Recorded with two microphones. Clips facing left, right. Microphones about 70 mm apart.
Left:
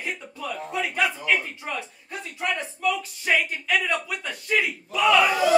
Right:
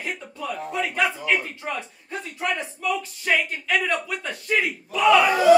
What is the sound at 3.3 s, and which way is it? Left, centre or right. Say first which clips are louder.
Speech: even; centre.